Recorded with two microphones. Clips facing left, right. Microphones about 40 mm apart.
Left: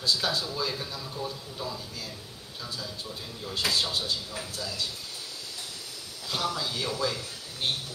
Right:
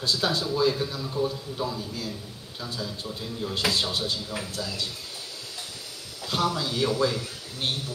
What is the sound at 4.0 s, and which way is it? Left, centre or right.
Speech, right.